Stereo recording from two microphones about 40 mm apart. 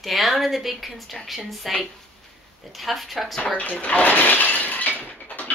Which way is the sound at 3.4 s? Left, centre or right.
Left.